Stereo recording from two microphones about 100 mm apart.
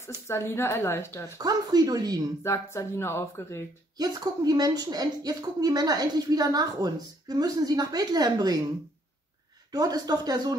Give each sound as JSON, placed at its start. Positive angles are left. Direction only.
{"t": 0.3, "sound": "a woman's voice", "side_deg": 25}
{"t": 1.4, "sound": "a woman's voice", "side_deg": -40}
{"t": 2.4, "sound": "a woman's voice", "side_deg": 25}
{"t": 4.0, "sound": "a woman's voice", "side_deg": -40}
{"t": 9.7, "sound": "a woman's voice", "side_deg": -40}